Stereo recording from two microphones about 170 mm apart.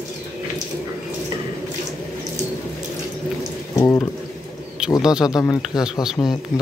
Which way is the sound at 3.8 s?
20° left (ahead or behind).